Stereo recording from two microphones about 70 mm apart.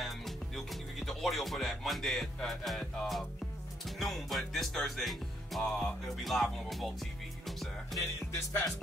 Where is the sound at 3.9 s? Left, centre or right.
Centre.